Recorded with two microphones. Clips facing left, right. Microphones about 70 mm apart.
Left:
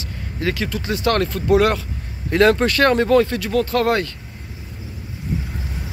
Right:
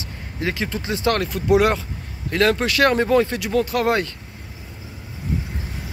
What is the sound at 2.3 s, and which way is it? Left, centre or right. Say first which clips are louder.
Speech: left 4 dB; centre.